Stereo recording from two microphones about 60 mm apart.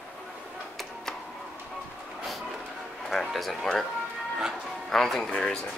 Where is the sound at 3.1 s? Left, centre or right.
Centre.